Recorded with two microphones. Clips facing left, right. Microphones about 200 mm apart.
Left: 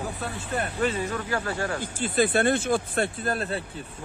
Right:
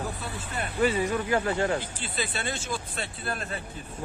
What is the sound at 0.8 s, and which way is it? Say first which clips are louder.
Speech: right 5 dB; 10° right (ahead or behind).